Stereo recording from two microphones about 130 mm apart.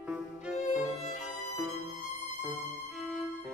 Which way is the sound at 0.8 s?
60° left (ahead or behind).